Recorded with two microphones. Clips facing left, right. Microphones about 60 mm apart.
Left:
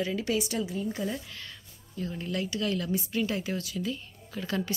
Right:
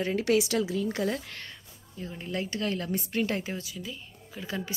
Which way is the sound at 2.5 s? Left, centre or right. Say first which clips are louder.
Left 1 dB; right.